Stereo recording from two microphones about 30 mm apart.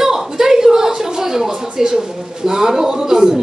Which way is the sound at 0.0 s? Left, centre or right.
Centre.